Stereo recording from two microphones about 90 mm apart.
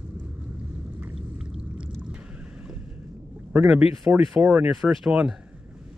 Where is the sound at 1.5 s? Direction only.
10° right (ahead or behind).